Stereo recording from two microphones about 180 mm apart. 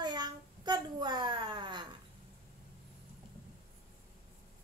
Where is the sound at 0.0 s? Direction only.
25° right (ahead or behind).